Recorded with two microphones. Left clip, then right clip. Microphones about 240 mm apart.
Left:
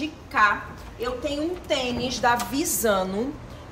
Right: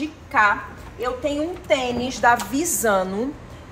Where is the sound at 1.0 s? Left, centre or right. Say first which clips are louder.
Right 4 dB; centre.